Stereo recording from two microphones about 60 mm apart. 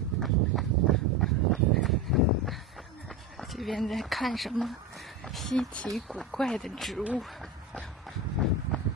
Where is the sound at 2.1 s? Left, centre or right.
Centre.